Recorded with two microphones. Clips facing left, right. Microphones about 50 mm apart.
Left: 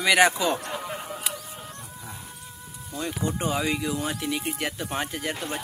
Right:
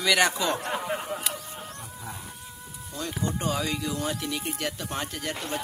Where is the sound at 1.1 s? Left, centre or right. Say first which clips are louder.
Even; centre.